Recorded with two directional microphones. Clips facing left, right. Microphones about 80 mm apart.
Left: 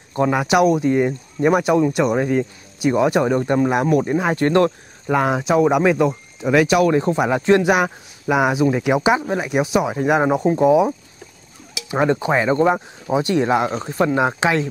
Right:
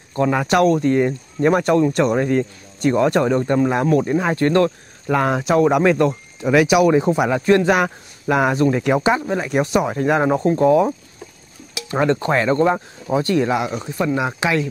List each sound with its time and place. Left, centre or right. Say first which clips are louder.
0.3 s speech: even; centre
5.0 s speech: even; centre
7.2 s speech: even; left
7.7 s speech: even; centre
11.9 s speech: even; centre; by 14.7 s left